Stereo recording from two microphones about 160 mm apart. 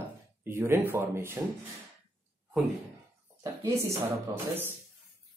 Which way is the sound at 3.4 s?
15° right (ahead or behind).